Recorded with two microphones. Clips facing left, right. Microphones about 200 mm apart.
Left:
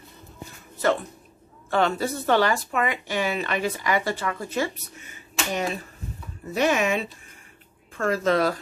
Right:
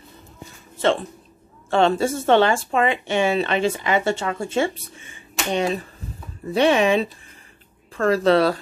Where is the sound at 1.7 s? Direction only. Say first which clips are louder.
Right 5 dB; 25° right (ahead or behind).